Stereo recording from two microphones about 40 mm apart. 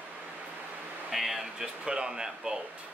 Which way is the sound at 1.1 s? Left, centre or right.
Centre.